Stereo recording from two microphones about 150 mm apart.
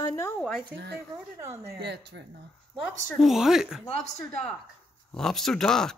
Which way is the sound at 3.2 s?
Centre (ahead or behind).